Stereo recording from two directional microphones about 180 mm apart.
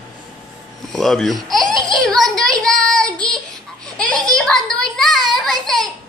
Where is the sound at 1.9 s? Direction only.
5° left (ahead or behind).